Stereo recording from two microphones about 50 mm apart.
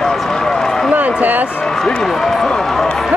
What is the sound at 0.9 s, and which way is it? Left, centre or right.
Speech, right.